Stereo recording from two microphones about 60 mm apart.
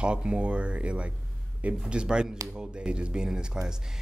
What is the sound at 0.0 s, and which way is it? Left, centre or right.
Speech, centre.